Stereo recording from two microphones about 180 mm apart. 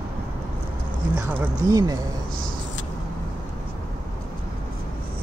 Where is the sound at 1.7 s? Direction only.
20° right (ahead or behind).